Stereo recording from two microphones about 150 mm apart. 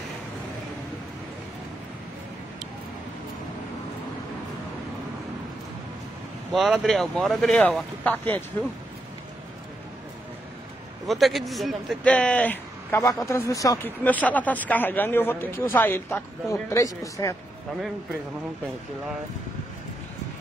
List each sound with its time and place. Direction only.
6.5 s speech: centre (ahead or behind)
11.1 s speech: centre (ahead or behind)
13.0 s speech: 20° left (ahead or behind)
14.0 s speech: 10° left (ahead or behind)